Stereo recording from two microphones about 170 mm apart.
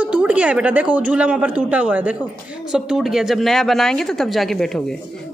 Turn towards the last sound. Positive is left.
turn(degrees=0)  # may be behind; listen again after turning